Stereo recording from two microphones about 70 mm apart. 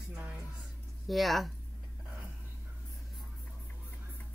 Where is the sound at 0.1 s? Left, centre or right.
Centre.